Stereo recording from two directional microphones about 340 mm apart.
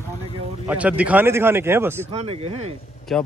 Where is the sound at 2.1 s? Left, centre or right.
Centre.